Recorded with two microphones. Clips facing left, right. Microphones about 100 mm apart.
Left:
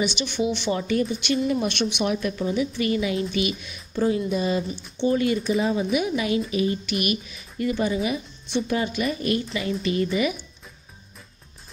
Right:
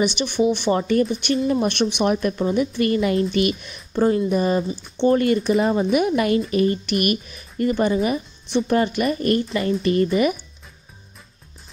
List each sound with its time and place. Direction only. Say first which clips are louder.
0.0 s speech: right 5 dB; 45° right (ahead or behind)